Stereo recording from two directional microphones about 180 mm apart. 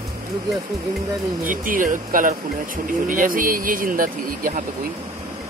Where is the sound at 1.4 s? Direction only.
50° right (ahead or behind).